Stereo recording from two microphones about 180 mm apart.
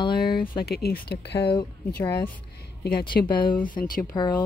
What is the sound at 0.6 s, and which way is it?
Speech, 60° left (ahead or behind).